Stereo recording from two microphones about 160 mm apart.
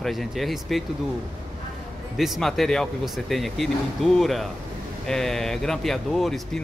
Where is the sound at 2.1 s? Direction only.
Centre (ahead or behind).